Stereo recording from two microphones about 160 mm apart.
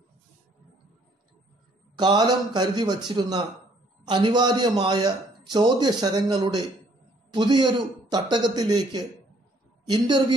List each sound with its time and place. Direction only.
2.0 s a man's voice: 25° right (ahead or behind)